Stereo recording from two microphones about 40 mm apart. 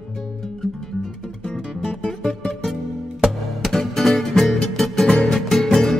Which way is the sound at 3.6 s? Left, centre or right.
Centre.